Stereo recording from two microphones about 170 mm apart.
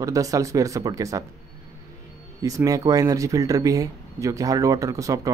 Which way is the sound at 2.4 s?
20° right (ahead or behind).